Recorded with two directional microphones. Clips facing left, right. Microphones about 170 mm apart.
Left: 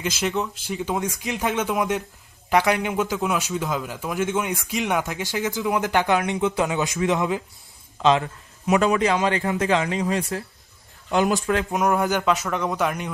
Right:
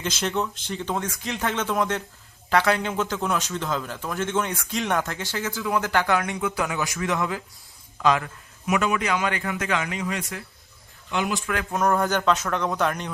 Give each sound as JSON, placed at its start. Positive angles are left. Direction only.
{"t": 0.0, "sound": "a man's voice", "side_deg": 5}
{"t": 11.5, "sound": "speech", "side_deg": 15}